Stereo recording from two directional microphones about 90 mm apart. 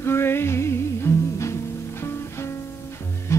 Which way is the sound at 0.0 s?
25° left (ahead or behind).